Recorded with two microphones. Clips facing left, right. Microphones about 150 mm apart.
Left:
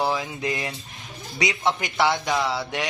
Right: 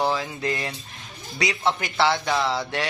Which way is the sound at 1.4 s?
15° left (ahead or behind).